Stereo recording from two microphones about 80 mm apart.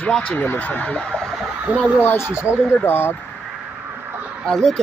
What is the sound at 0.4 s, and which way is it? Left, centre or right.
Speech, left.